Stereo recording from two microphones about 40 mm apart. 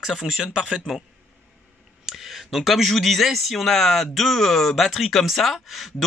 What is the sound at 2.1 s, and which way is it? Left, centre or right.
Speech, centre.